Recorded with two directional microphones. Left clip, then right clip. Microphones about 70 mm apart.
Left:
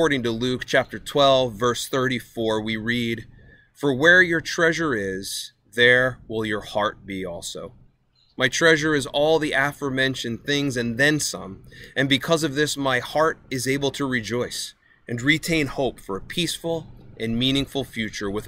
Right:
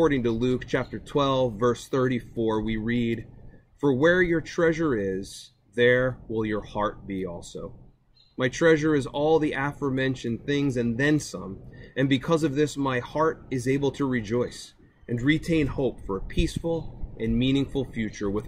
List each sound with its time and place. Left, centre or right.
0.0 s speech: left